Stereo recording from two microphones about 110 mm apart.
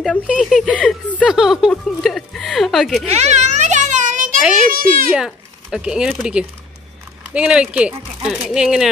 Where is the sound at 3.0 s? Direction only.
85° right.